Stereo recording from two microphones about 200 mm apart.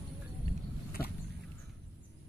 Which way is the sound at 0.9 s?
50° left (ahead or behind).